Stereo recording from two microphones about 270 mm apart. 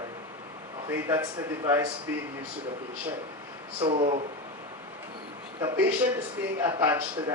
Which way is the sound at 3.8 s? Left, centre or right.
Centre.